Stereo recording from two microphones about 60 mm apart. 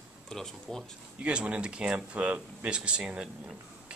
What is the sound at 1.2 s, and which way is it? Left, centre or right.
Speech, centre.